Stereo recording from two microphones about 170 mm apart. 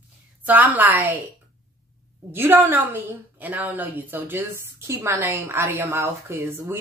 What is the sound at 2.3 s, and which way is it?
A woman's voice, 10° right (ahead or behind).